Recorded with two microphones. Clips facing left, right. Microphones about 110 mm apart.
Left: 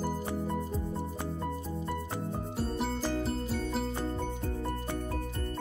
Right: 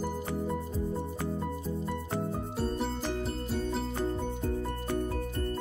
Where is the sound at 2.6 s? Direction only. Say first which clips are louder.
Even; centre (ahead or behind).